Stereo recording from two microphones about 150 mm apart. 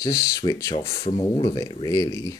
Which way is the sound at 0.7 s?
35° left (ahead or behind).